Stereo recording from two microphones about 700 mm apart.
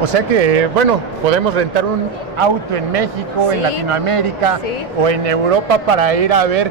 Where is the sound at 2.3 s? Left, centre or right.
Right.